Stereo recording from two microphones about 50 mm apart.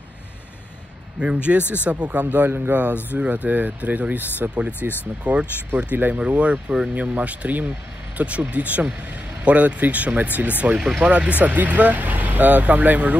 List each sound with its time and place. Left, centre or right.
1.2 s speech: right
1.6 s speech: left
1.9 s speech: right
2.3 s speech: right
3.1 s speech: right
4.7 s speech: left
5.2 s speech: right
10.8 s speech: centre